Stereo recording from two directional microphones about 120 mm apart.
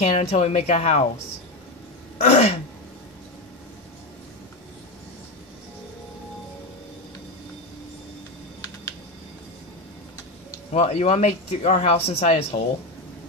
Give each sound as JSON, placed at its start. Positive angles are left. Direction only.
{"t": 0.0, "sound": "speech", "side_deg": 60}
{"t": 2.2, "sound": "speech", "side_deg": 60}
{"t": 10.7, "sound": "speech", "side_deg": 65}